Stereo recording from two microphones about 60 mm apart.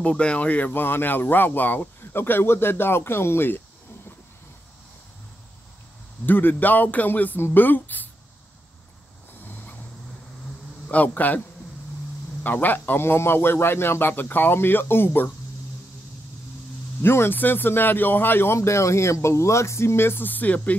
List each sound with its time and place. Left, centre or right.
0.0 s speech: centre; by 3.6 s left
6.2 s speech: left
10.9 s a man's voice: left
12.4 s speech: left
17.0 s speech: left